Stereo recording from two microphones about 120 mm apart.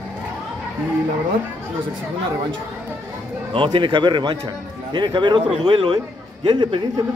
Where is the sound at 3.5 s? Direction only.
45° right (ahead or behind).